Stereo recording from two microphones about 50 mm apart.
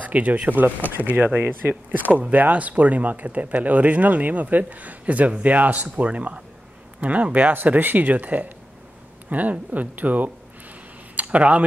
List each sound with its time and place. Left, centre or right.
0.0 s speech: right
7.5 s speech: right
11.1 s a sound: right